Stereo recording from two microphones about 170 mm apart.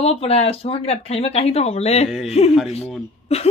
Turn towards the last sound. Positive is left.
turn(degrees=35)  # may be behind; listen again after turning